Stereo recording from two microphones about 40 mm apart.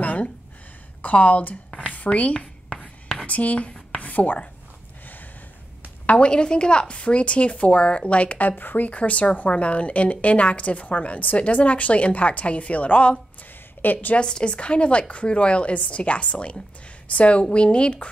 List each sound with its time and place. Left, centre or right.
0.0 s a sound: left
1.0 s a woman's voice: left
2.0 s writing: left
3.2 s speech: left
3.9 s a sound: left
6.0 s a woman's voice: left
6.3 s a woman's voice: left
13.4 s a sound: left
14.1 s a woman's voice: left